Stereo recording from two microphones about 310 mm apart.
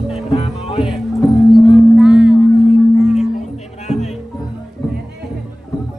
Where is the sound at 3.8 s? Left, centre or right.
Left.